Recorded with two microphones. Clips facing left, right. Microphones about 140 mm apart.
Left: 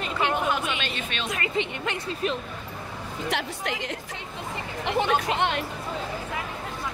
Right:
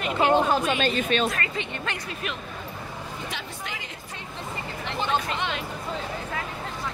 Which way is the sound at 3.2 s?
75° left (ahead or behind).